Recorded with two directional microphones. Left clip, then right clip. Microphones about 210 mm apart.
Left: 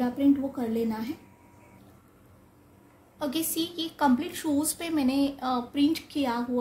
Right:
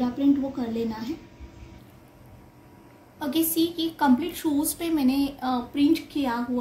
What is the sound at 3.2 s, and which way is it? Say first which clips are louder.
A woman's voice: right 5 dB; 50° left (ahead or behind).